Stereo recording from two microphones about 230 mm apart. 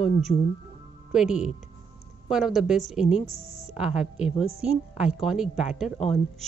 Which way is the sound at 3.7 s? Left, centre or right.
Centre.